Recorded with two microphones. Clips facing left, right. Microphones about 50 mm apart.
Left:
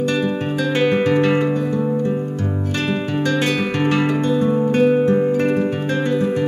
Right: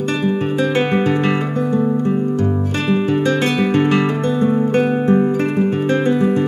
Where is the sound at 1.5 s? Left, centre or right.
Right.